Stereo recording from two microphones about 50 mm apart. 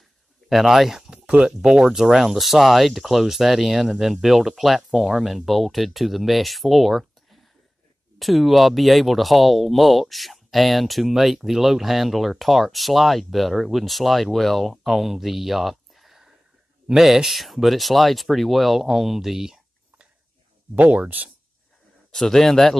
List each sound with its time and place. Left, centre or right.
0.5 s speech: centre
1.2 s a sound: right
1.6 s speech: centre
20.7 s speech: right
22.1 s speech: centre